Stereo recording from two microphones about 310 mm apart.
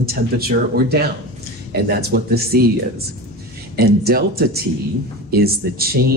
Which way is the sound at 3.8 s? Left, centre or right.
Right.